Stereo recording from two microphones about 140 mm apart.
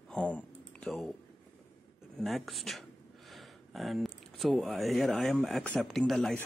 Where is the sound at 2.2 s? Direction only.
Centre (ahead or behind).